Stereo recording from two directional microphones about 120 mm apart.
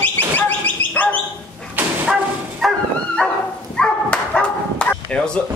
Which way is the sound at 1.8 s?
15° right (ahead or behind).